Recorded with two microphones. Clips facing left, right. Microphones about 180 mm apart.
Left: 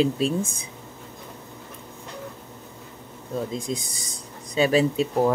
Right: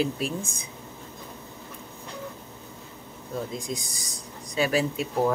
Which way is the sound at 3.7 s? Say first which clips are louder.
Left 4 dB; 25° left (ahead or behind).